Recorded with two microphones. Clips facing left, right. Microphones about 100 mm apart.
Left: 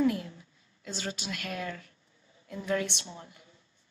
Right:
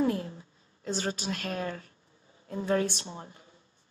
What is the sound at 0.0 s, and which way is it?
A woman's voice, 35° right (ahead or behind).